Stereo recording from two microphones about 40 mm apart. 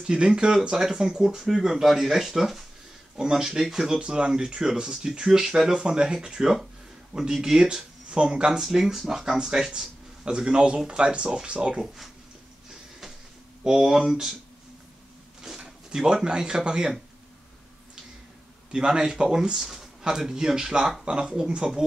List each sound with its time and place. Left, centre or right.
0.0 s speech: right
3.2 s speech: centre
4.0 s speech: right
8.6 s speech: centre; by 11.8 s right
13.7 s speech: centre
15.4 s speech: centre
18.7 s speech: centre